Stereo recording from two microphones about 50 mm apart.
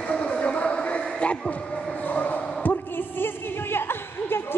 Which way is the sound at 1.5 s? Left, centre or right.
Left.